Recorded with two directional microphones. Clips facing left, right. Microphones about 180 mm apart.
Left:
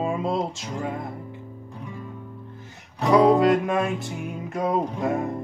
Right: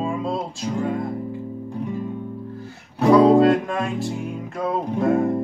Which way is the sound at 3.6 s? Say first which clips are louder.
Left 1 dB; 20° left (ahead or behind).